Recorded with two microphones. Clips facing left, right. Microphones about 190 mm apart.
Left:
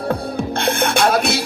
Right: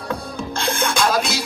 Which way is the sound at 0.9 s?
60° left (ahead or behind).